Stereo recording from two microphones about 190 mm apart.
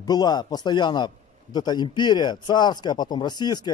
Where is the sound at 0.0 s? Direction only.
20° left (ahead or behind).